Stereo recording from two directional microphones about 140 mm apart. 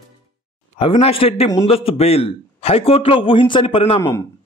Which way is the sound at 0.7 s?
45° left (ahead or behind).